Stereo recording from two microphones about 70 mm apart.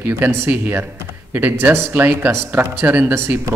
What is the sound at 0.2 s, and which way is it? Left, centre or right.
Speech, right.